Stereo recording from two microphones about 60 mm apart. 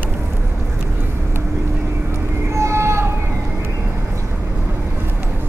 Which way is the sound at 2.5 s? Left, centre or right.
Right.